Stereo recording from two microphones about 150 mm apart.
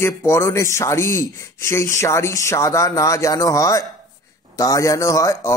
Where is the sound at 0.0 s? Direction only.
15° left (ahead or behind).